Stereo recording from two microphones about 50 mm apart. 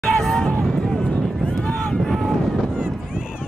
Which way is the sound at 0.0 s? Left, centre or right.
Centre.